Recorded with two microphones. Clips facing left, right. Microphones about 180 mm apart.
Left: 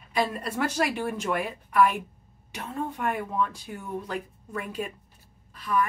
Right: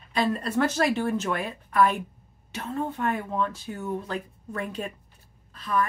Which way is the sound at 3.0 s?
15° left (ahead or behind).